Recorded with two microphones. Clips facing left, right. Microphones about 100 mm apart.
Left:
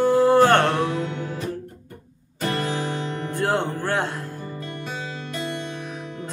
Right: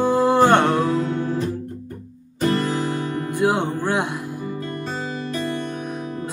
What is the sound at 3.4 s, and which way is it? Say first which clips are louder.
Music: right 3 dB; 15° right (ahead or behind).